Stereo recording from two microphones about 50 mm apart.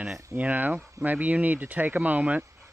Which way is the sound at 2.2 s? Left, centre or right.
Right.